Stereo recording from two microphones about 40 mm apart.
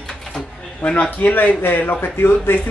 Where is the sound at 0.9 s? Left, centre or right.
Left.